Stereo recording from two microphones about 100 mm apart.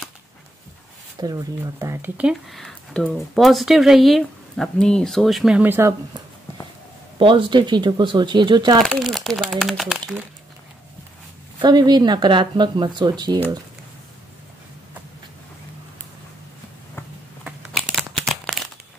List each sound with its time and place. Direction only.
1.2 s speech: 35° right (ahead or behind)
2.5 s speech: 5° left (ahead or behind)
5.6 s speech: 25° right (ahead or behind)
7.2 s speech: 60° right (ahead or behind)
8.8 s speech: centre (ahead or behind)
11.6 s speech: 45° right (ahead or behind)
17.7 s crumpling: centre (ahead or behind)